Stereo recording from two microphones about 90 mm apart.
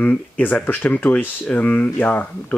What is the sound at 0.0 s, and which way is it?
Speech, 20° left (ahead or behind).